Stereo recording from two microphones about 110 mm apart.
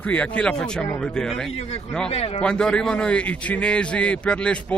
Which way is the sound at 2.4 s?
10° left (ahead or behind).